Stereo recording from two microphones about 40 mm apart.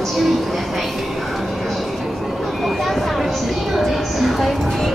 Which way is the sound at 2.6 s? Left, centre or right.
Centre.